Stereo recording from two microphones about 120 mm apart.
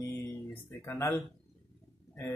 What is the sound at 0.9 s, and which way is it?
Speech, 20° left (ahead or behind).